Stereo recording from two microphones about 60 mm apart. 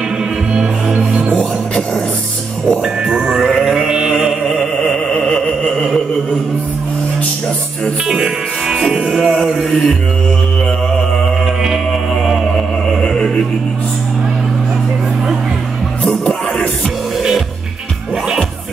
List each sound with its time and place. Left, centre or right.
0.2 s music: centre
1.3 s music: centre
3.1 s music: centre
3.3 s music: centre
3.6 s music: centre
8.1 s music: centre
11.9 s music: centre
13.0 s chant: centre
16.0 s music: left